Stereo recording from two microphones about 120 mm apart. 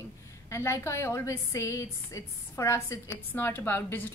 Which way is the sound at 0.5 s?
25° left (ahead or behind).